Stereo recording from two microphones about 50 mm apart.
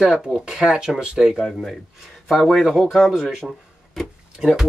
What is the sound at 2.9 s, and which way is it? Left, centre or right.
Speech, centre.